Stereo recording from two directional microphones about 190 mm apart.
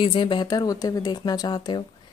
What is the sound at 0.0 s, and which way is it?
Speech, 25° left (ahead or behind).